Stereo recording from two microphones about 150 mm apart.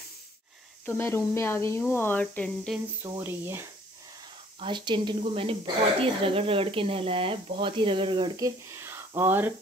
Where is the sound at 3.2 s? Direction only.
15° right (ahead or behind).